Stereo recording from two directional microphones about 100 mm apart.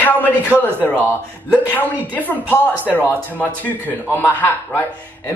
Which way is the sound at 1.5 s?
15° left (ahead or behind).